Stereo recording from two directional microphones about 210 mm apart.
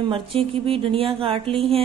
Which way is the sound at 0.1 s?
25° right (ahead or behind).